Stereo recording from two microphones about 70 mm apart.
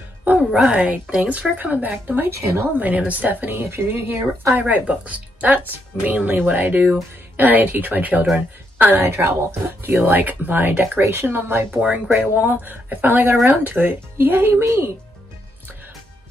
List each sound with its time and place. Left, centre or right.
0.4 s speech: centre
0.7 s speech: centre
11.8 s speech: centre
12.2 s speech: right
14.5 s speech: right